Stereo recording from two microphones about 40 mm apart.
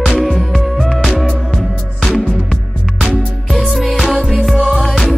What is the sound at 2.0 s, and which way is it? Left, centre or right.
Music, centre.